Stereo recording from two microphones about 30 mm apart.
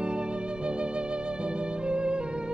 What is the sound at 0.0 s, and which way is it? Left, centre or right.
Music, right.